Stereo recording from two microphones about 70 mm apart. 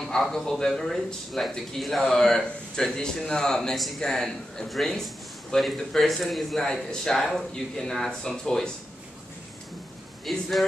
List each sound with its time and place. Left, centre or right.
0.0 s speech: centre
10.3 s speech: centre